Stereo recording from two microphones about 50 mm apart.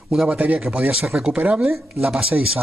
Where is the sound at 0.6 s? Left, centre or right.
Right.